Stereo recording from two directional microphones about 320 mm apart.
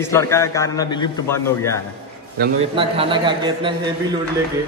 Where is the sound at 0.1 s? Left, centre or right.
Centre.